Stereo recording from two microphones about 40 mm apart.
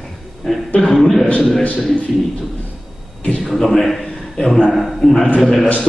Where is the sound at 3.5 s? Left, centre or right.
Centre.